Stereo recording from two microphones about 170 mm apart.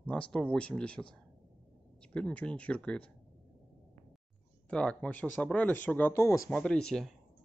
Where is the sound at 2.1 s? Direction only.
5° left (ahead or behind).